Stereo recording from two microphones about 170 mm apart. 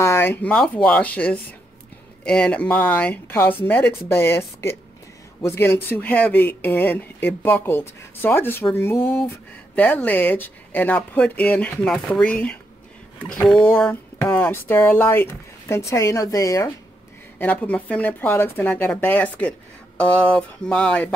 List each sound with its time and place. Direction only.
0.0 s speech: 15° left (ahead or behind)